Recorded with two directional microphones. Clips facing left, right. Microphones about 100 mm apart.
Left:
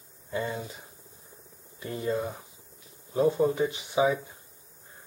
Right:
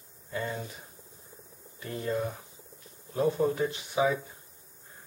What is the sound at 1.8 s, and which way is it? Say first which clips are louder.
Speech: left 2 dB; 10° left (ahead or behind).